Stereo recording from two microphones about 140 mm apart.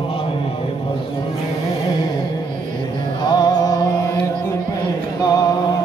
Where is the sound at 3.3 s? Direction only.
25° left (ahead or behind).